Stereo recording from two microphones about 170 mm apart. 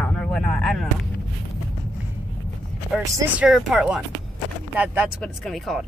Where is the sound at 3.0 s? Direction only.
20° right (ahead or behind).